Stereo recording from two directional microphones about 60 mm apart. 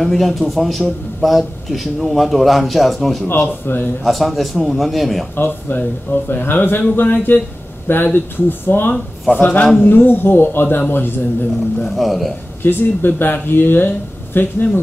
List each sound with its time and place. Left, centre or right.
0.0 s a man's voice: centre
3.3 s speech: left
4.0 s a man's voice: centre
5.3 s speech: left
11.8 s a man's voice: centre
12.6 s speech: left